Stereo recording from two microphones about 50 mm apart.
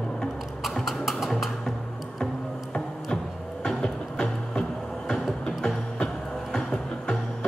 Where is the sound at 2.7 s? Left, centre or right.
Centre.